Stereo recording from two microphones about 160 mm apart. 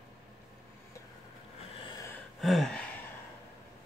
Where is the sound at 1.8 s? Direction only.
30° left (ahead or behind).